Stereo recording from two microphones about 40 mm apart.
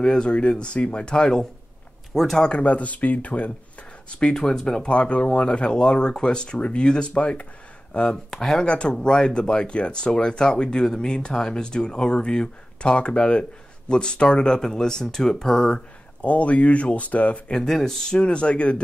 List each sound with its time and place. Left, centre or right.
0.0 s speech: centre
2.5 s speech: left
4.2 s speech: centre
4.8 s speech: left
7.9 s speech: centre
8.6 s speech: left
16.2 s speech: left
17.6 s speech: centre
18.2 s speech: left